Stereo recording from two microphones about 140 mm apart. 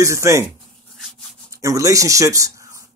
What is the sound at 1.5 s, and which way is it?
Speech, 20° right (ahead or behind).